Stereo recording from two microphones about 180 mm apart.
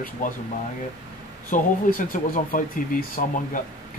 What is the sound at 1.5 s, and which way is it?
Speech, 50° left (ahead or behind).